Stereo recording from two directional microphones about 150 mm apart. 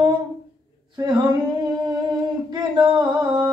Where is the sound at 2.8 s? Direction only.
30° right (ahead or behind).